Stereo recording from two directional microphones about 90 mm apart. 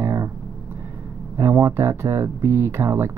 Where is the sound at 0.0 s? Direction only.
30° right (ahead or behind).